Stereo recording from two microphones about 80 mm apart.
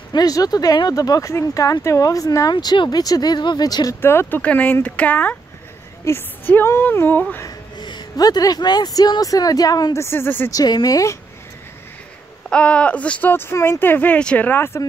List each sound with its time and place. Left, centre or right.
0.1 s speech: left
2.5 s speech: left
3.6 s speech: left
4.0 s speech: left
4.4 s a woman's voice: centre
7.8 s speech: left
9.9 s a woman's voice: left
10.5 s speech: left
12.4 s speech: centre
13.3 s a woman's voice: left